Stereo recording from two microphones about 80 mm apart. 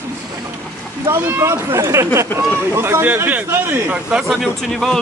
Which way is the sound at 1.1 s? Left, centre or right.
Right.